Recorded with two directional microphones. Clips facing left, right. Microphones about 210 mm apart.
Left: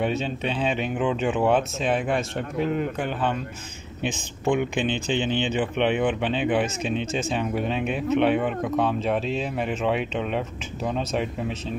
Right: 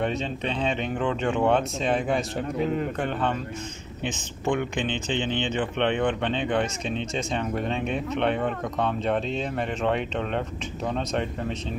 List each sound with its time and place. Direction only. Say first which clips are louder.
0.0 s speech: left 2 dB; 5° left (ahead or behind)